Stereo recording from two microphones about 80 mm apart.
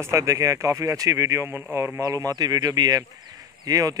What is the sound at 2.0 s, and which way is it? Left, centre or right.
Speech, right.